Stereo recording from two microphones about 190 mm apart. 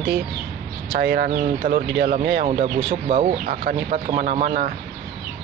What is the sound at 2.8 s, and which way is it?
Speech, 30° right (ahead or behind).